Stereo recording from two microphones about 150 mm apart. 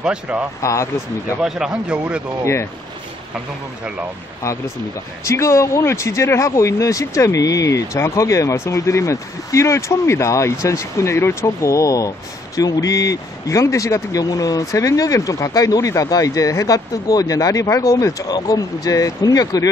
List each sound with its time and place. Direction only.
0.0 s speech: 10° right (ahead or behind)
0.6 s speech: 20° left (ahead or behind)
1.4 s speech: 5° right (ahead or behind)
2.4 s speech: 20° left (ahead or behind)
5.2 s speech: 20° left (ahead or behind)